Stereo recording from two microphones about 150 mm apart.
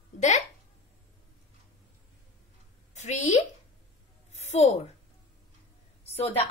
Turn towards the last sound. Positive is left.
turn(degrees=40)  # may be behind; listen again after turning